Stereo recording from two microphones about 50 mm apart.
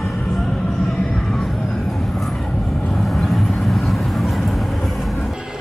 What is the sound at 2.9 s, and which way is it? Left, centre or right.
Vehicle, centre.